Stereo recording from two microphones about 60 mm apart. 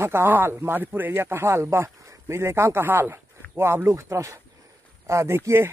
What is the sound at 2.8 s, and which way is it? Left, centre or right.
Speech, right.